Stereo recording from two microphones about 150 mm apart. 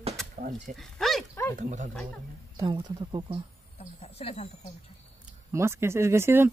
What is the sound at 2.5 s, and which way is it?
Speech, 25° right (ahead or behind).